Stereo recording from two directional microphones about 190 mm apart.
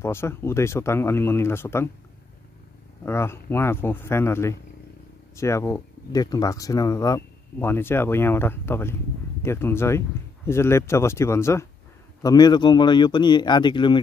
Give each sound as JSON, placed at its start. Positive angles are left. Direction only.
{"t": 0.0, "sound": "speech", "side_deg": 15}
{"t": 3.1, "sound": "speech", "side_deg": 15}